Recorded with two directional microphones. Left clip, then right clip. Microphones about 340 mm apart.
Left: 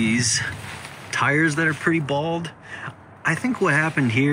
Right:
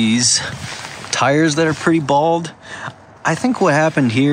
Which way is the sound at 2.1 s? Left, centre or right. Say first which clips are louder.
Right 10 dB; right.